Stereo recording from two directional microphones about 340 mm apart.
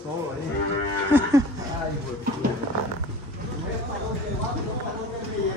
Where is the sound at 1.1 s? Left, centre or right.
Centre.